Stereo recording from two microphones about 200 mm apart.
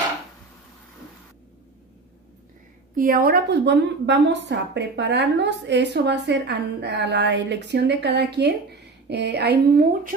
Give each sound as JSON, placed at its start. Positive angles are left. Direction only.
{"t": 3.0, "sound": "a woman's voice", "side_deg": -50}